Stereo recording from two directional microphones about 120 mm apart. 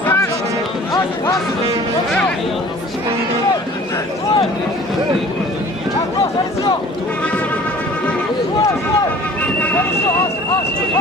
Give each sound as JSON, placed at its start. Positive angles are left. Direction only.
{"t": 0.0, "sound": "run", "side_deg": 15}
{"t": 0.9, "sound": "speech", "side_deg": 30}
{"t": 9.4, "sound": "vehicle", "side_deg": 10}